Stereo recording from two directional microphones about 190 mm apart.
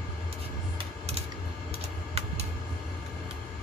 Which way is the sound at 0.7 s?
35° right (ahead or behind).